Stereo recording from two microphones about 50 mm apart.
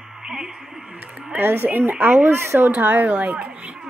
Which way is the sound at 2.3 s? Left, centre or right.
Right.